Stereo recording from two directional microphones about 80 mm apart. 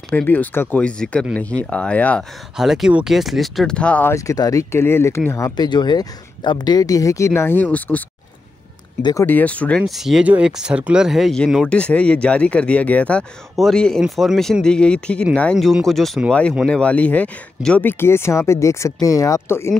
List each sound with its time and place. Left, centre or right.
0.1 s speech: left
2.5 s speech: centre
3.7 s speech: centre
4.0 s speech: left
4.7 s speech: left
5.6 s speech: left
7.4 s speech: left
9.2 s speech: left
9.8 s speech: centre
10.2 s speech: centre
11.6 s speech: centre
13.6 s speech: centre
15.9 s speech: centre; by 19.7 s left